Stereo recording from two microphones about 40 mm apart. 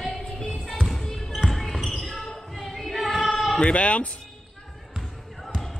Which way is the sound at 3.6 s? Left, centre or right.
Left.